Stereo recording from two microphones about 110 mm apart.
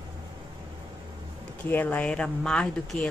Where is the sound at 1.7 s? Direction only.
15° left (ahead or behind).